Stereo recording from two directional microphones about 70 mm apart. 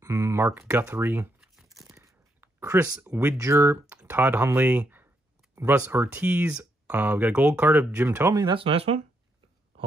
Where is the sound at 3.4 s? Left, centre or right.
Right.